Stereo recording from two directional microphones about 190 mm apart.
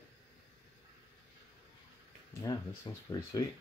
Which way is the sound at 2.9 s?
25° left (ahead or behind).